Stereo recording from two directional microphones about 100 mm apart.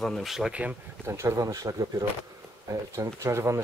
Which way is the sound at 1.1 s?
30° right (ahead or behind).